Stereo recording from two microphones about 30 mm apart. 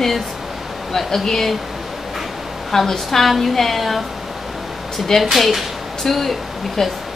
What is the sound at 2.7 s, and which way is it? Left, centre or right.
A woman's voice, centre.